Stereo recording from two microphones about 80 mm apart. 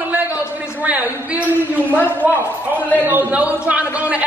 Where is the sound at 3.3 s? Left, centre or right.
Centre.